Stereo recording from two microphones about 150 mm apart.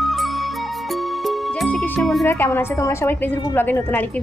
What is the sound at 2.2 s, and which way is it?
A woman's voice, 15° left (ahead or behind).